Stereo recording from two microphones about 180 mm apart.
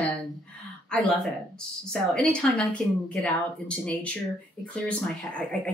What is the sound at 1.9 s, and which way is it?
Speech, 5° left (ahead or behind).